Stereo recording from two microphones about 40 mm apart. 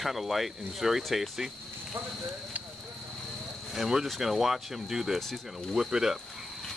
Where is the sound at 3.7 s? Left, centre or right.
Centre.